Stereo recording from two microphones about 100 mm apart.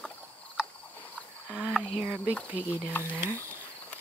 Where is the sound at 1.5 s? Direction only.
10° right (ahead or behind).